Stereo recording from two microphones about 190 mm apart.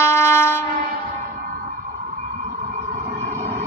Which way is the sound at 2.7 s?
50° right (ahead or behind).